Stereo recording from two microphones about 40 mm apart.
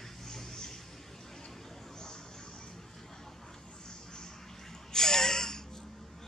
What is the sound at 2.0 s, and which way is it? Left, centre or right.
Vehicle, centre.